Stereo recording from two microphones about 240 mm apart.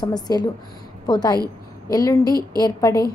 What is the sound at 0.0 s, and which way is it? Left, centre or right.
A woman's voice, centre.